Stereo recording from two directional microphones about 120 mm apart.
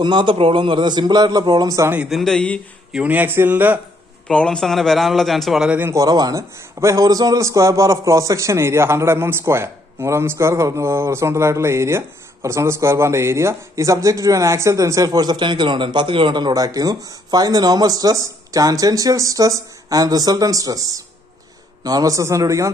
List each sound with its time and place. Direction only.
0.0 s a man's voice: 40° right (ahead or behind)
2.0 s a man's voice: centre (ahead or behind)
2.9 s a man's voice: 10° right (ahead or behind)
4.3 s a man's voice: 5° left (ahead or behind)
5.8 s a man's voice: 20° right (ahead or behind)
6.0 s a man's voice: 35° right (ahead or behind)